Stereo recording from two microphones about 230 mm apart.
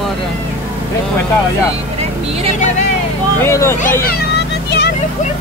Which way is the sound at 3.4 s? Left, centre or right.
Centre.